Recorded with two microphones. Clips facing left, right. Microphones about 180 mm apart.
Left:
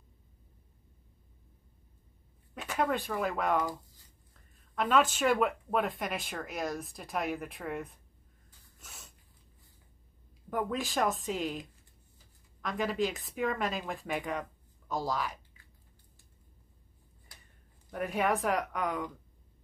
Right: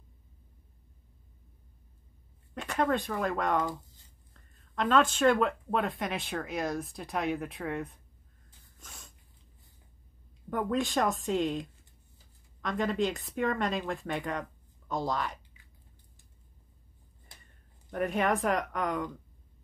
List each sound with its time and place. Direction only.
2.5 s speech: 5° left (ahead or behind)
8.8 s a sound: 5° left (ahead or behind)
10.5 s speech: centre (ahead or behind)
12.6 s speech: centre (ahead or behind)
17.9 s speech: centre (ahead or behind)